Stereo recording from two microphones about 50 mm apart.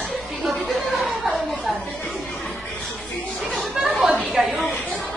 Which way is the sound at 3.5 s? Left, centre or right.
Centre.